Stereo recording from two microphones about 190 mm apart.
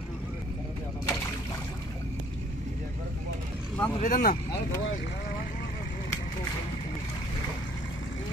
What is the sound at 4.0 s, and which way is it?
Speech, 45° left (ahead or behind).